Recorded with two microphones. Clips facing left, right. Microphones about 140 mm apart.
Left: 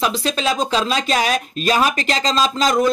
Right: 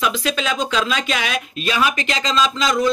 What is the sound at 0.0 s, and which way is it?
Speech, 35° left (ahead or behind).